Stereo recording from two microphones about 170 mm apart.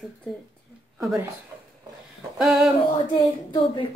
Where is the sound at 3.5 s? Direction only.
30° left (ahead or behind).